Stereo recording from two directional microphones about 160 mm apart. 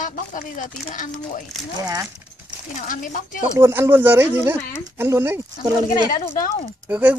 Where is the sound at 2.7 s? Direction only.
55° left (ahead or behind).